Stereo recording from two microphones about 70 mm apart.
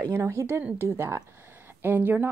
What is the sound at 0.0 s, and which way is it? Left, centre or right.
A woman's voice, right.